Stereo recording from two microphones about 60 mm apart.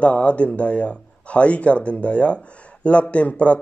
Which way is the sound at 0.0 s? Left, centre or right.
Left.